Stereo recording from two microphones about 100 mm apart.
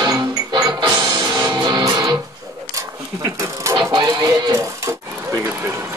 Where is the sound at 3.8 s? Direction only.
45° right (ahead or behind); by 5.8 s 30° right (ahead or behind).